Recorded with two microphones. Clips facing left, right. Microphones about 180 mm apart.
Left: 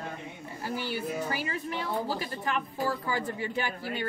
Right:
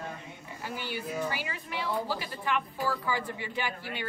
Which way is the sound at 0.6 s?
40° left (ahead or behind).